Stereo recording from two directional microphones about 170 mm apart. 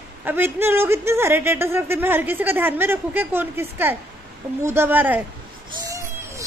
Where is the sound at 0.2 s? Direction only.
10° right (ahead or behind).